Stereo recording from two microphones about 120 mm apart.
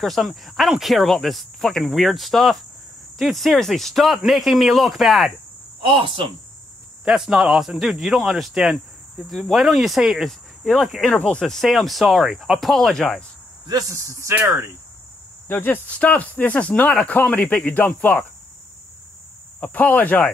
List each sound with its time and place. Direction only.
0.0 s speech: centre (ahead or behind)
5.8 s cricket: 45° right (ahead or behind)
7.1 s speech: 5° right (ahead or behind)
13.7 s speech: 30° right (ahead or behind)
15.4 s speech: 15° left (ahead or behind)
19.6 s speech: 15° left (ahead or behind)